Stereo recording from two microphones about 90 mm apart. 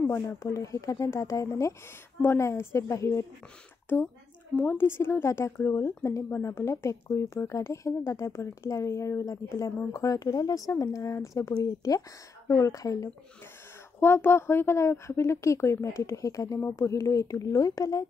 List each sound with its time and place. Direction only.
0.1 s a woman's voice: 30° left (ahead or behind)
4.6 s a woman's voice: 25° left (ahead or behind); by 13.1 s 40° left (ahead or behind)
13.9 s a woman's voice: 25° left (ahead or behind); by 18.0 s 40° left (ahead or behind)